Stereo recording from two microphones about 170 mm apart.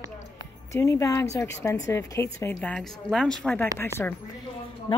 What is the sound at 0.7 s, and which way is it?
A woman's voice, 20° left (ahead or behind).